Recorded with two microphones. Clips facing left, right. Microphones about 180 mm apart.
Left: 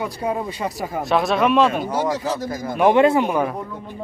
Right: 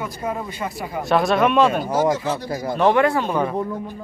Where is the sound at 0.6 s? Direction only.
40° left (ahead or behind).